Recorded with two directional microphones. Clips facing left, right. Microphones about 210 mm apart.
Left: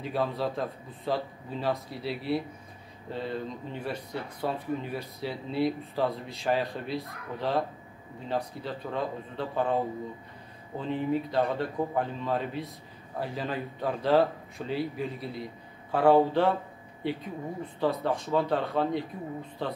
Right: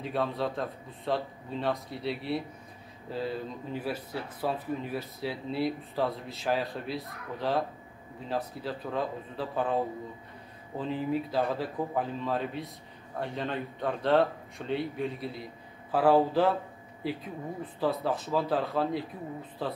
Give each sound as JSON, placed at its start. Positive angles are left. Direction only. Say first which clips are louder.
{"t": 0.0, "sound": "speech", "louder": "left 1 dB", "side_deg": 0}